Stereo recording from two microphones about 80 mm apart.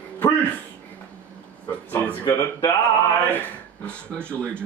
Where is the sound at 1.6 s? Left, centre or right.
Left.